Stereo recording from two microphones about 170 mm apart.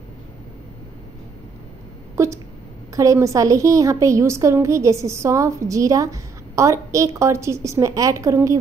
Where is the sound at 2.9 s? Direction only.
20° right (ahead or behind).